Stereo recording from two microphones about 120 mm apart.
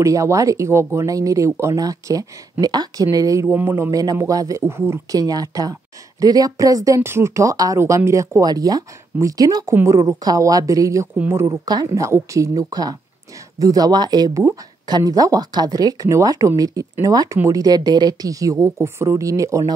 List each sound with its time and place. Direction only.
0.0 s speech: 25° right (ahead or behind)
3.4 s a man's voice: 15° right (ahead or behind)
3.9 s speech: 30° right (ahead or behind)
11.6 s speech: 35° right (ahead or behind)